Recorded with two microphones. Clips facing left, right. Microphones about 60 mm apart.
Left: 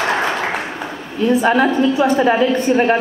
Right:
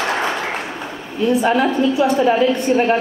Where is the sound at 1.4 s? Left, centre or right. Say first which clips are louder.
Left 3 dB; left.